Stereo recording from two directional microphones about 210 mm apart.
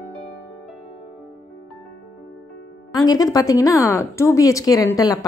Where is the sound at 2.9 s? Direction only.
15° left (ahead or behind).